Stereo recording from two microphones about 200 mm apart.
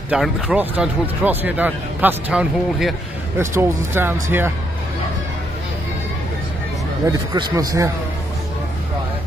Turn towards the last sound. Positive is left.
turn(degrees=-15)  # may be behind; listen again after turning